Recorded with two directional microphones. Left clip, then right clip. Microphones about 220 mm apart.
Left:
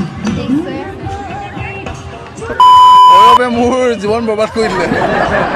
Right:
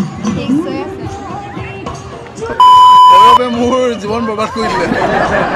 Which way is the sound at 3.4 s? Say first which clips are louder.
Left 1 dB; 35° left (ahead or behind).